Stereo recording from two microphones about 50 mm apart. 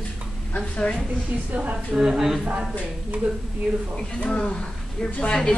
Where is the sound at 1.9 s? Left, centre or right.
Centre.